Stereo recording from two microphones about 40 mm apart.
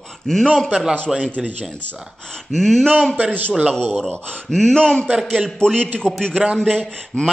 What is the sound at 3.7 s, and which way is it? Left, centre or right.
A man's voice, centre.